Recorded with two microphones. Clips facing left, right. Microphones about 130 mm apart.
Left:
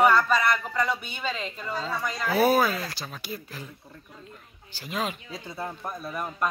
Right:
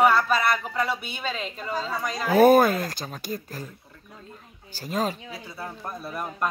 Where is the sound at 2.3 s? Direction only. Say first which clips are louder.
Right 6 dB; 50° right (ahead or behind).